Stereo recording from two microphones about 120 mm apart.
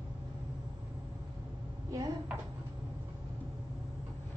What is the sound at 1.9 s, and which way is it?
Speech, 30° right (ahead or behind).